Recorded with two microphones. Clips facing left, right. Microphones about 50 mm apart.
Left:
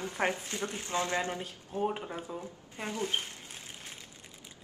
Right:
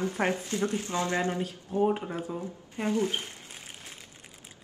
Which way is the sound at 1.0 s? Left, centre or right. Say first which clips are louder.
Right 5 dB; right.